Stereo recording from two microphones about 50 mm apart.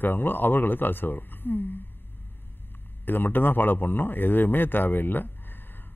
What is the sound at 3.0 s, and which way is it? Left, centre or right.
Speech, left.